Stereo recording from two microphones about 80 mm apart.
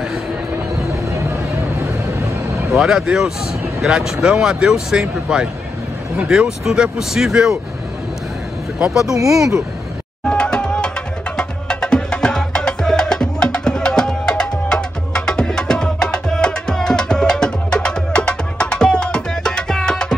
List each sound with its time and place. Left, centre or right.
1.1 s a sound: right
2.7 s speech: centre
8.7 s speech: centre
9.1 s speech: right
10.2 s music: centre